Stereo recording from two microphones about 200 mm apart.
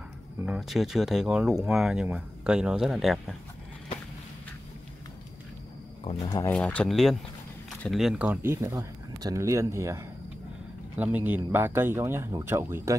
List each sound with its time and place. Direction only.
0.4 s speech: 5° right (ahead or behind)
6.0 s speech: 25° left (ahead or behind)
6.5 s speech: 5° left (ahead or behind); by 12.9 s 15° right (ahead or behind)